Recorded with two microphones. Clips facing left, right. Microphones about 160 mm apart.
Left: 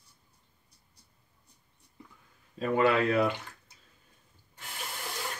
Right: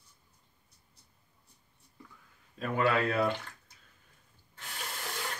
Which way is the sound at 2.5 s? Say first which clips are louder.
Left 4 dB; 30° left (ahead or behind).